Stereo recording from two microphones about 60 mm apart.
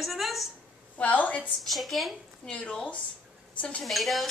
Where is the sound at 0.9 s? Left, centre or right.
Left.